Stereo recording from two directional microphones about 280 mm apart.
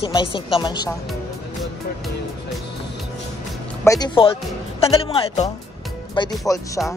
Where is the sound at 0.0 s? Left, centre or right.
Centre.